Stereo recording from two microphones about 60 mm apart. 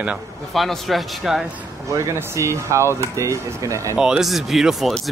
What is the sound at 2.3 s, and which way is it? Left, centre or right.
Speech, right.